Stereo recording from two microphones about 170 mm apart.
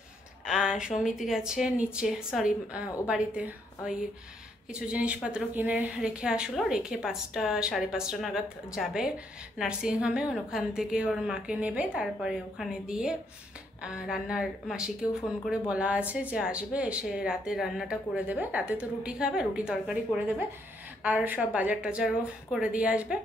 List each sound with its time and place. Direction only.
0.5 s a woman's voice: 5° right (ahead or behind)